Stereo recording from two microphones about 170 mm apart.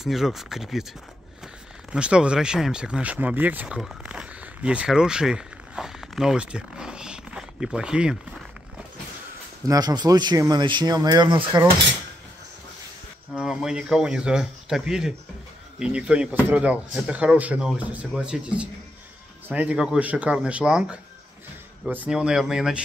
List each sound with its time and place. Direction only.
0.0 s speech: centre (ahead or behind)
1.9 s speech: 5° right (ahead or behind)
9.7 s speech: 25° right (ahead or behind)
13.4 s speech: 5° right (ahead or behind)